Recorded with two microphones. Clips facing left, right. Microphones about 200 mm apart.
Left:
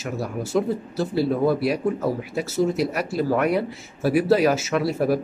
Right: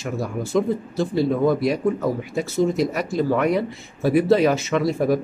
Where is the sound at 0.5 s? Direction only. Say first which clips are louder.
Right 2 dB; 5° left (ahead or behind).